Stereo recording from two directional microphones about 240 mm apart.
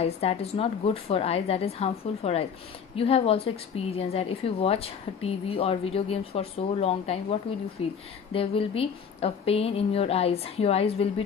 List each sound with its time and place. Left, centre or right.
0.0 s a woman's voice: left